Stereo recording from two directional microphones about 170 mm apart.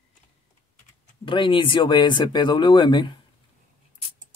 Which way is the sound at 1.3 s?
30° left (ahead or behind).